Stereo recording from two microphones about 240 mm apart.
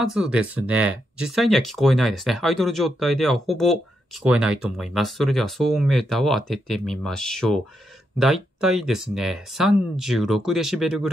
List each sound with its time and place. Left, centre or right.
0.0 s speech: centre